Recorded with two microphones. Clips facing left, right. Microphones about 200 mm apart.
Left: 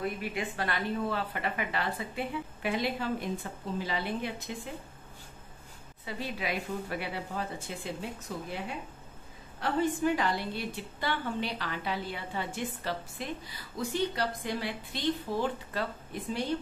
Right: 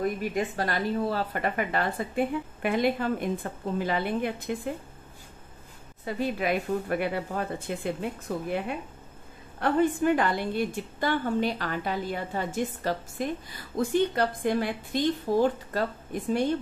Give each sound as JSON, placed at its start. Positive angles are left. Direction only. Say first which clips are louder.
{"t": 0.0, "sound": "a woman's voice", "louder": "right 6 dB", "side_deg": -45}
{"t": 6.0, "sound": "a woman's voice", "louder": "right 8 dB", "side_deg": -50}